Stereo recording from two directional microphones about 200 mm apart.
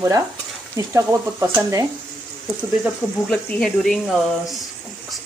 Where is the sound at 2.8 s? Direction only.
5° left (ahead or behind).